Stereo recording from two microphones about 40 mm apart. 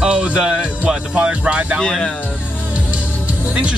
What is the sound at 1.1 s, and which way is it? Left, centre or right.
Speech, right.